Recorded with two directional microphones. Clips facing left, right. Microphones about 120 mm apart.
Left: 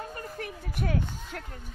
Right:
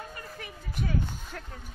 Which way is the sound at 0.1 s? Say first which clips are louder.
Left 5 dB; 55° left (ahead or behind).